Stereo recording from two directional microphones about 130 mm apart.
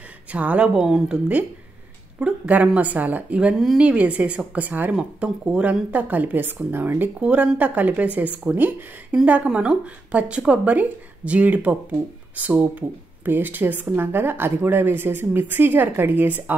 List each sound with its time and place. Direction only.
0.3 s speech: 10° right (ahead or behind)